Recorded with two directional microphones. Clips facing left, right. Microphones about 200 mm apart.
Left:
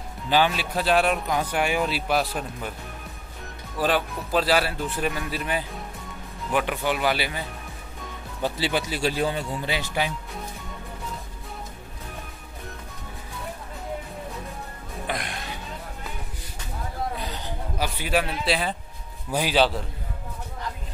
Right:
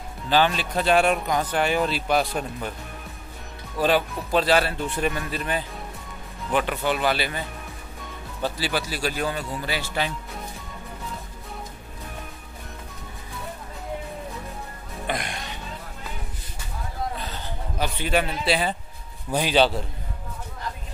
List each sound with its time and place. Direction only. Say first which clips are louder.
0.3 s speech: right 1 dB; 10° left (ahead or behind)
3.7 s speech: right 2 dB; centre (ahead or behind)
15.0 s music: right 2 dB; centre (ahead or behind)
17.2 s a sound: left 1 dB; 10° left (ahead or behind)
19.3 s speech: right 1 dB; 5° left (ahead or behind)